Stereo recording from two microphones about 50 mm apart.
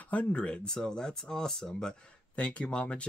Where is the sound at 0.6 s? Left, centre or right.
Centre.